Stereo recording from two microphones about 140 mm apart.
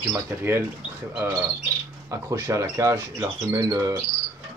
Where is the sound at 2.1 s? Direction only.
25° right (ahead or behind).